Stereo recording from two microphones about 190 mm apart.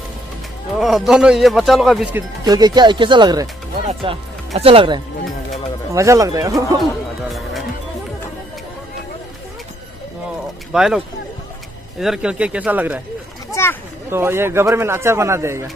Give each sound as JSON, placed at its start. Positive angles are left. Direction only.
{"t": 0.7, "sound": "speech", "side_deg": 0}
{"t": 2.4, "sound": "speech", "side_deg": -20}
{"t": 5.9, "sound": "a man's voice", "side_deg": -15}
{"t": 6.8, "sound": "speech", "side_deg": 0}
{"t": 10.7, "sound": "speech", "side_deg": -5}
{"t": 12.0, "sound": "speech", "side_deg": -5}
{"t": 13.5, "sound": "a sound", "side_deg": 10}
{"t": 14.1, "sound": "a man's voice", "side_deg": -10}